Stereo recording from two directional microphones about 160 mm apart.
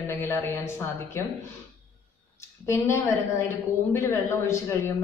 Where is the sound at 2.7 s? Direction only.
15° left (ahead or behind).